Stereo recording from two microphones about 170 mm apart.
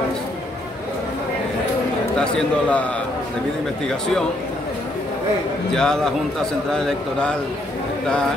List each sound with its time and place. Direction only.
2.1 s a man's voice: 5° left (ahead or behind)
5.8 s a man's voice: 5° left (ahead or behind)